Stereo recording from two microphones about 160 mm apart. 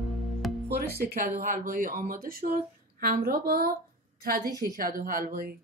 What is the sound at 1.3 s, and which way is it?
Speech, 55° right (ahead or behind).